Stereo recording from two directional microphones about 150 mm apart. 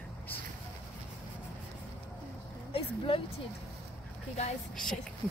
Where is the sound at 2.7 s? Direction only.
35° left (ahead or behind).